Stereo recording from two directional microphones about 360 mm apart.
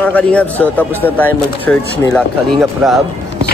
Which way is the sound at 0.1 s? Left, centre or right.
Centre.